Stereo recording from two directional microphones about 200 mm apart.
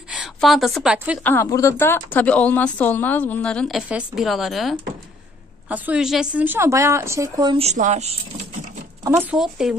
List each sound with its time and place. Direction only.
0.1 s a woman's voice: centre (ahead or behind)
1.2 s a woman's voice: 10° left (ahead or behind); by 7.6 s 20° right (ahead or behind)
7.6 s a woman's voice: 35° right (ahead or behind)
9.1 s speech: 5° right (ahead or behind)